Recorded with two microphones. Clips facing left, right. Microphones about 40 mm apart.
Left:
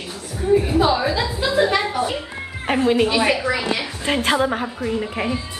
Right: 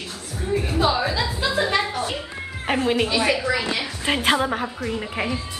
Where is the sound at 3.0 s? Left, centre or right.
Centre.